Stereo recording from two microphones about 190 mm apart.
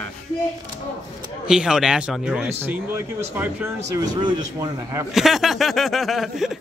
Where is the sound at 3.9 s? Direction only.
20° right (ahead or behind).